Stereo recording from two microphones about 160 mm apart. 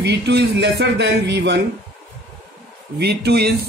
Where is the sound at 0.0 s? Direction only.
90° right.